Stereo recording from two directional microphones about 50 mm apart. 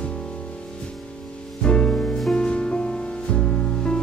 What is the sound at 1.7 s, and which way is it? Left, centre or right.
Music, centre.